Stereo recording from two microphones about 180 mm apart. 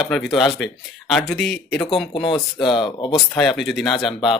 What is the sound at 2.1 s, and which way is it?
Speech, 30° left (ahead or behind).